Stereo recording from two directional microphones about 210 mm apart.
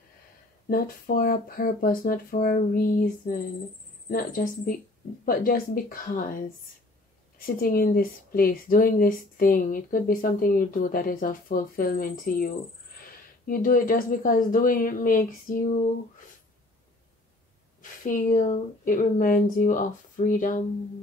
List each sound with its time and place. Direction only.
0.7 s speech: 45° left (ahead or behind)
4.1 s speech: 40° left (ahead or behind)
13.5 s speech: 40° left (ahead or behind)
18.0 s speech: 40° left (ahead or behind)